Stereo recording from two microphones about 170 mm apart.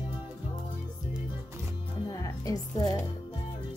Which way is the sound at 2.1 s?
20° left (ahead or behind).